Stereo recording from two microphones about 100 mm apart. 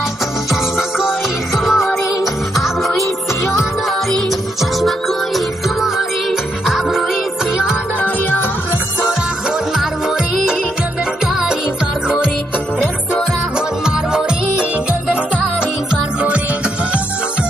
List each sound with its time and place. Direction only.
0.7 s music: 5° right (ahead or behind)
4.1 s music: centre (ahead or behind)
8.0 s music: 20° left (ahead or behind)
9.8 s music: 5° right (ahead or behind)
15.9 s music: 10° right (ahead or behind)